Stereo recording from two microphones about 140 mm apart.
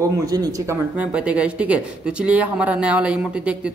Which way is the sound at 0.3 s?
25° right (ahead or behind).